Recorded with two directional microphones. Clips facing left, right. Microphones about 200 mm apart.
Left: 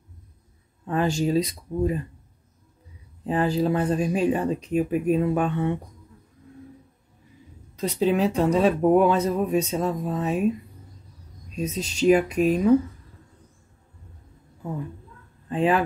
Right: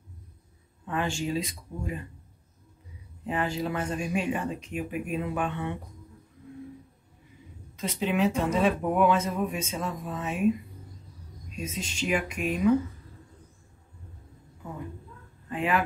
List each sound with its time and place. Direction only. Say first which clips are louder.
0.8 s speech: left 7 dB; 40° left (ahead or behind)
3.3 s speech: left 7 dB; 35° left (ahead or behind)
7.7 s speech: left 6 dB; 40° left (ahead or behind)
11.5 s speech: left 7 dB; 35° left (ahead or behind)
15.5 s speech: left 6 dB; 30° left (ahead or behind)